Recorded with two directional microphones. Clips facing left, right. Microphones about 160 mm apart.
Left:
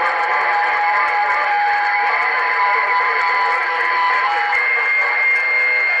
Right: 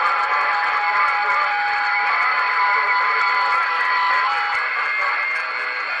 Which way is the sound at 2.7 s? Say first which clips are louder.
Left 3 dB; 55° left (ahead or behind).